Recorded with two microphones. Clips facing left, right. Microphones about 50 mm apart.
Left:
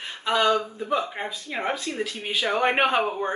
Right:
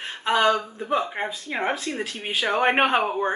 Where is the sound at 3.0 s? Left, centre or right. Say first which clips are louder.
Right 2 dB; centre.